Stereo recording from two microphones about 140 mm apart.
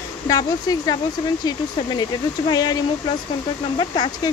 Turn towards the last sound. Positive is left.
turn(degrees=30)  # may be behind; listen again after turning